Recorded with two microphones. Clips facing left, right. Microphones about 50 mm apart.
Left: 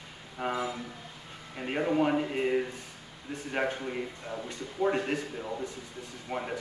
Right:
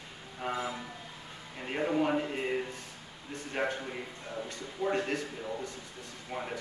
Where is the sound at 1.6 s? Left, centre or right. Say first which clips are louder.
Left 3 dB; centre.